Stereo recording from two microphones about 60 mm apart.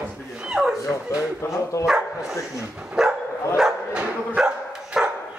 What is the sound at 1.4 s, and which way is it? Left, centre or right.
Speech, left.